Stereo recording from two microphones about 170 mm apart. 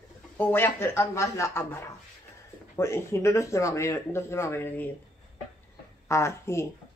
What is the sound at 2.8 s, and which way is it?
Speech, 15° left (ahead or behind).